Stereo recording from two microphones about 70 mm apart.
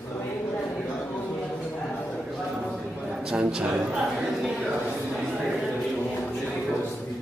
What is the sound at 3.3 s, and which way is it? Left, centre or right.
Speech, centre.